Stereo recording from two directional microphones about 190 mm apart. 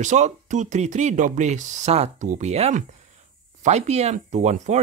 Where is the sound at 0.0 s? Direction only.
40° right (ahead or behind).